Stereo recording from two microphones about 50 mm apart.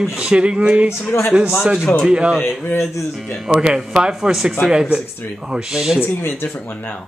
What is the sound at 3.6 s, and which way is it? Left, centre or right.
Speech, centre.